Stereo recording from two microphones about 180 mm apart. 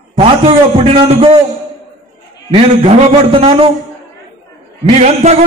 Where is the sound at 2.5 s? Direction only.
35° right (ahead or behind).